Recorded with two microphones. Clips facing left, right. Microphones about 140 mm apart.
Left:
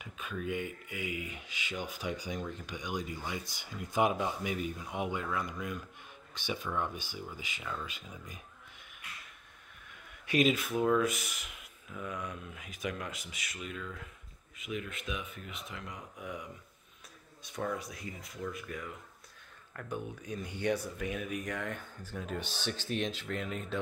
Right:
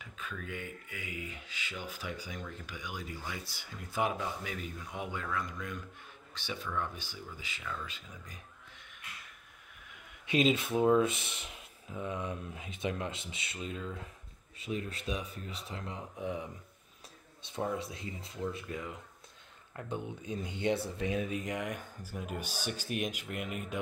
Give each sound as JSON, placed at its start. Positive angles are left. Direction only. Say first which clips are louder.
{"t": 0.0, "sound": "speech", "louder": "left 5 dB", "side_deg": 15}
{"t": 10.2, "sound": "speech", "louder": "even", "side_deg": -25}